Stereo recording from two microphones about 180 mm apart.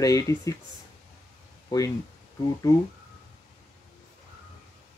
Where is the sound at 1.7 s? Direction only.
20° left (ahead or behind).